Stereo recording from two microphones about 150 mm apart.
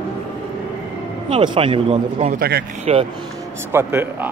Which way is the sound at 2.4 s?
90° right.